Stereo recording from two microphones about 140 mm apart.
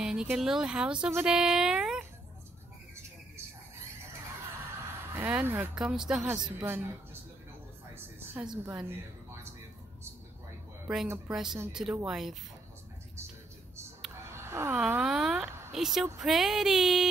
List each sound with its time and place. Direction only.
0.0 s speech: 5° right (ahead or behind)
5.1 s speech: 15° right (ahead or behind)
7.9 s a sound: 10° right (ahead or behind)
11.2 s speech: 5° right (ahead or behind)
14.3 s a sound: 20° right (ahead or behind)
14.8 s speech: 5° right (ahead or behind)